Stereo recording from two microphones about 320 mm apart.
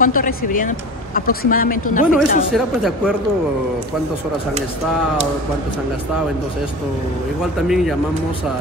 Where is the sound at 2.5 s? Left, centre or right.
Centre.